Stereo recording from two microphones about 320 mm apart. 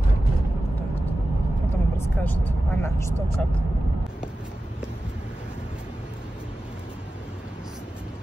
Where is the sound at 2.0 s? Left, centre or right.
Centre.